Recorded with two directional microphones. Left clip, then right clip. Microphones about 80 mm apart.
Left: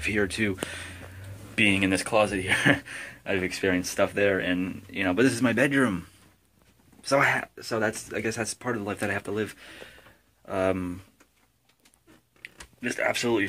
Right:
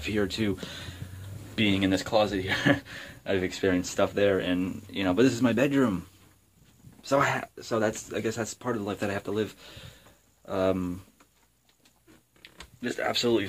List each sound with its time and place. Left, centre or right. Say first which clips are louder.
0.0 s speech: left 3 dB; centre
0.7 s speech: left 3 dB; centre
1.9 s speech: left 1 dB; left
2.6 s speech: left 2 dB; centre
3.3 s speech: even; centre
5.2 s speech: left 1 dB; centre
7.2 s speech: left 3 dB; centre
8.3 s speech: left 1 dB; centre; by 9.8 s right
10.4 s speech: even; centre
12.4 s a sound: left 2 dB; centre